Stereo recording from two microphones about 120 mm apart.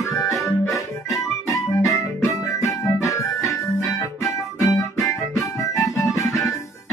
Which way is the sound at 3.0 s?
25° left (ahead or behind).